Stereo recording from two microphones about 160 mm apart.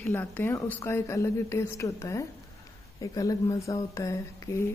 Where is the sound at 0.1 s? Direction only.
15° left (ahead or behind).